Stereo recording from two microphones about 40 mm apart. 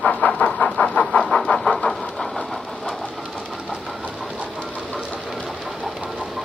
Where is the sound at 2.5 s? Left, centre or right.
Centre.